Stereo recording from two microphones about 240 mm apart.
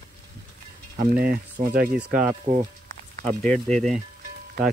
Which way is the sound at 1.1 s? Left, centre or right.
Right.